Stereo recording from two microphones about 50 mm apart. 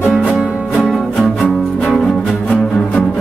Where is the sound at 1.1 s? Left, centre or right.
Left.